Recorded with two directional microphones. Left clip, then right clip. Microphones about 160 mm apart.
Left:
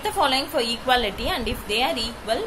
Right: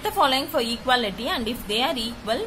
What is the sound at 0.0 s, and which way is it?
A woman's voice, 30° right (ahead or behind).